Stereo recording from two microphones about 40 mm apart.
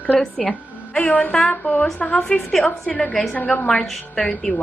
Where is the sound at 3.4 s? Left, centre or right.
Left.